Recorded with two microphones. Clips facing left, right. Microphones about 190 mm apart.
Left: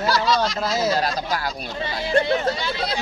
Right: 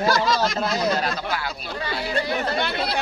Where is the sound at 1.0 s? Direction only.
40° left (ahead or behind).